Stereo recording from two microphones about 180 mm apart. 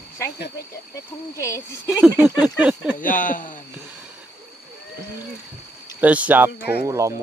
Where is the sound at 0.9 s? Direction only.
15° left (ahead or behind).